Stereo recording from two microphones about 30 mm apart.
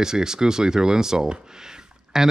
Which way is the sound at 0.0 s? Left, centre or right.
Centre.